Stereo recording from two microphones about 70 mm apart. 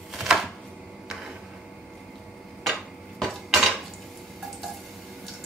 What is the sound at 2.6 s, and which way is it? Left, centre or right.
Dishes, centre.